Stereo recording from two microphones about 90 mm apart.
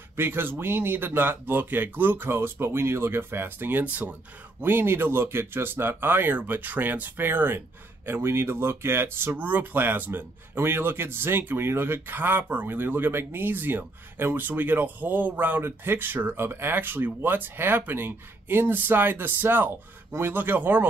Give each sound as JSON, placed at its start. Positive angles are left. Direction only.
{"t": 0.1, "sound": "speech", "side_deg": -25}